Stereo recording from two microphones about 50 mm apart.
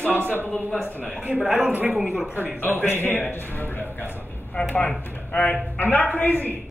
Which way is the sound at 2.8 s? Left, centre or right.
Left.